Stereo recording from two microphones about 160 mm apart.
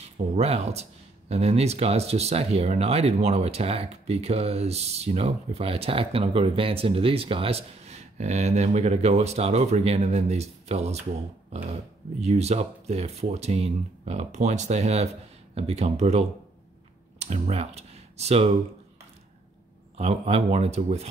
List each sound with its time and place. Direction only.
0.0 s speech: 40° right (ahead or behind)
20.0 s speech: 40° right (ahead or behind)